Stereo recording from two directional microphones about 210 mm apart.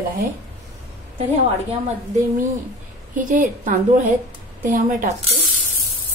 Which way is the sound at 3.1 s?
40° right (ahead or behind).